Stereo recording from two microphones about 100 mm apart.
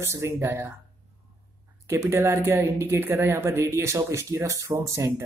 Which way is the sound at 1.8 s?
25° right (ahead or behind).